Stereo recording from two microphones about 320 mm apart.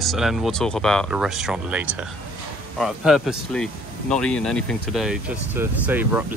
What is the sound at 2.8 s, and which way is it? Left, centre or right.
Speech, centre.